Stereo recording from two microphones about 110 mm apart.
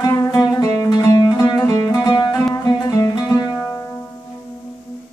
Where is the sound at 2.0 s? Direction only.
40° left (ahead or behind).